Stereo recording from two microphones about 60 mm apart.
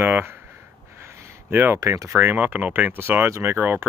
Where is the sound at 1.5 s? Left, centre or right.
Right.